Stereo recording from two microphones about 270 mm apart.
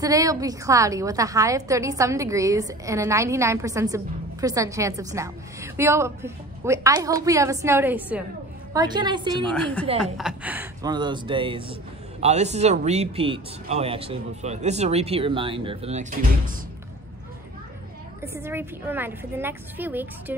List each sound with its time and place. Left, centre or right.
0.0 s a woman's voice: centre
9.5 s a woman's voice: centre; by 16.5 s right
18.2 s a woman's voice: centre